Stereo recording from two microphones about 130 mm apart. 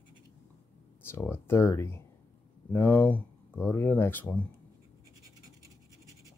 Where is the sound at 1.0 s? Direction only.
20° left (ahead or behind).